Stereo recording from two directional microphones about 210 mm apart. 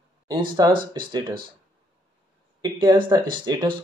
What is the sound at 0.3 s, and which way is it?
Speech, 20° right (ahead or behind).